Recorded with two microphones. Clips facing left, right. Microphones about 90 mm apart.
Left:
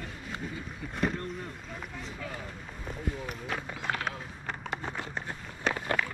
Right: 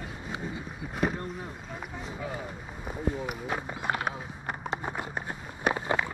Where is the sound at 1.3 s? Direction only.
15° right (ahead or behind).